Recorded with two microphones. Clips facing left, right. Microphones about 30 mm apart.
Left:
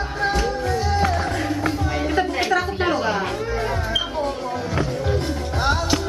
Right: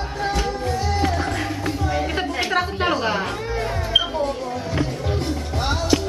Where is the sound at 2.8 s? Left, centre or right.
Centre.